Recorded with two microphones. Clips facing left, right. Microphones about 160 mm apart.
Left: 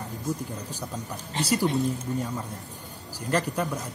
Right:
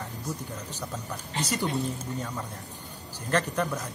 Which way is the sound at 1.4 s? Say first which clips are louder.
Left 5 dB; 10° left (ahead or behind).